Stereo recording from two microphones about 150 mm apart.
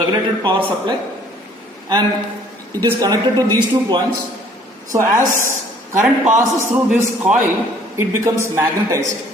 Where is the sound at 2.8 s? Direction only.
25° right (ahead or behind).